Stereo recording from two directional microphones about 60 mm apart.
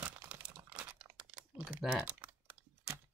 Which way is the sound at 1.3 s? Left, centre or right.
Right.